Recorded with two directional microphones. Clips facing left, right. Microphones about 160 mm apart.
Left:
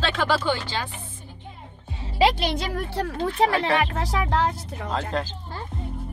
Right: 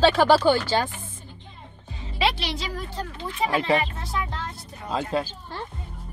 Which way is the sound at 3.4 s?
90° left.